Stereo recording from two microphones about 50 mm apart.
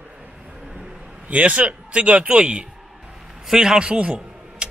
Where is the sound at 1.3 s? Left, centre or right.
Right.